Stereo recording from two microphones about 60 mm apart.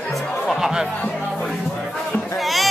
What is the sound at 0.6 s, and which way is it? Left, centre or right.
Speech, centre.